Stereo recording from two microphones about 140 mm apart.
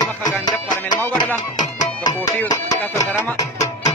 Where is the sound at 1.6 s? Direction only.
30° left (ahead or behind).